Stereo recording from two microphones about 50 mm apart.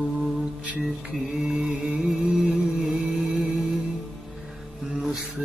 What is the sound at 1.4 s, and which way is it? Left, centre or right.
Music, centre.